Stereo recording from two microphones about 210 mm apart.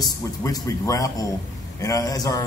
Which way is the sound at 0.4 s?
15° left (ahead or behind).